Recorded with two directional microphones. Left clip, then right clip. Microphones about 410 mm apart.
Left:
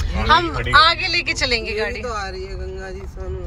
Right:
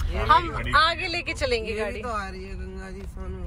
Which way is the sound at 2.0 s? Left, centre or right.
Right.